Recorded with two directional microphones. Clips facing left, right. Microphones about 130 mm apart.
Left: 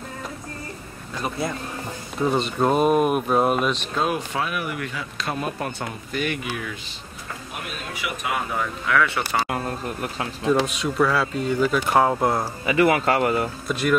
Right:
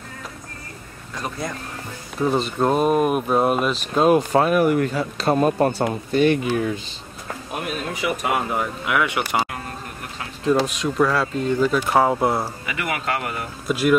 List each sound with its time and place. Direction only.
1.2 s speech: 5° left (ahead or behind)
3.9 s a man's voice: 35° right (ahead or behind)
8.0 s a man's voice: 35° right (ahead or behind)
8.5 s speech: 20° right (ahead or behind)
10.7 s speech: centre (ahead or behind)
12.6 s speech: 30° left (ahead or behind)
13.7 s speech: 5° right (ahead or behind)